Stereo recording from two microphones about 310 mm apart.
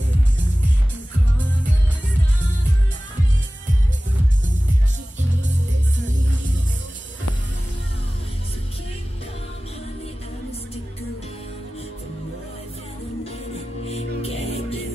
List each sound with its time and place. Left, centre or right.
13.8 s music: centre